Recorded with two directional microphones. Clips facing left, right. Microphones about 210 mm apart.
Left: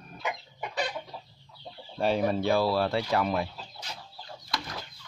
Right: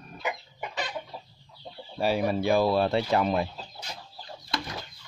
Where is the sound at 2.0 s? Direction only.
5° right (ahead or behind); by 3.5 s 25° right (ahead or behind).